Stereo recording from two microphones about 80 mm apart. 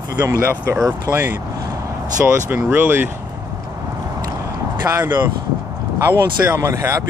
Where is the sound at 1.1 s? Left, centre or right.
Centre.